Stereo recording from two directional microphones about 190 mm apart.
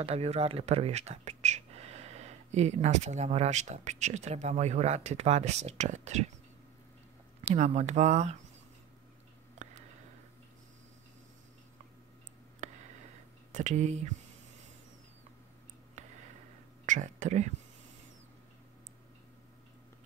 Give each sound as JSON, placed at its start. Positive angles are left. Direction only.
{"t": 0.0, "sound": "speech", "side_deg": -35}
{"t": 7.4, "sound": "speech", "side_deg": -35}
{"t": 12.6, "sound": "a sound", "side_deg": -40}
{"t": 13.5, "sound": "speech", "side_deg": -40}
{"t": 16.8, "sound": "speech", "side_deg": -40}